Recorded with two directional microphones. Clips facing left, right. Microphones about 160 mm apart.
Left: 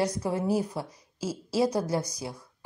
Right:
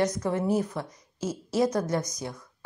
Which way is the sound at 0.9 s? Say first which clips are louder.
Right 1 dB; 30° left (ahead or behind).